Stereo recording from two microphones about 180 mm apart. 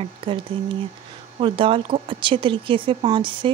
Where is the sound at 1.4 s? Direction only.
30° right (ahead or behind).